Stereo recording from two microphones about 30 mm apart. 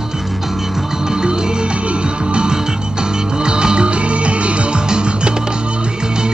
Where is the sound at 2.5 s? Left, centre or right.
Right.